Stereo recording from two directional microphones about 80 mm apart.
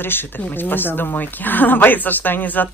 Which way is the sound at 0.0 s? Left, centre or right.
Left.